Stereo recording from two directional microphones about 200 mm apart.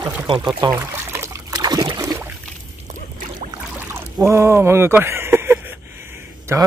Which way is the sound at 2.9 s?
40° right (ahead or behind).